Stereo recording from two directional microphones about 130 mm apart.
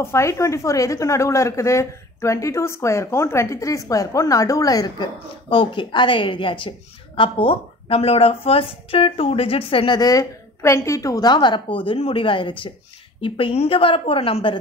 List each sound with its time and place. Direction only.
0.0 s speech: 20° left (ahead or behind); by 14.6 s 40° left (ahead or behind)